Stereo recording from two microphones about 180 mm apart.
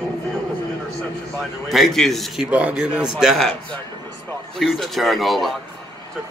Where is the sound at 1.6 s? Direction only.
Centre (ahead or behind).